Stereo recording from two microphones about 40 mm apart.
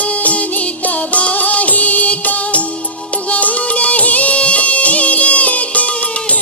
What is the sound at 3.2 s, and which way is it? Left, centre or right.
Music of bollywood, left.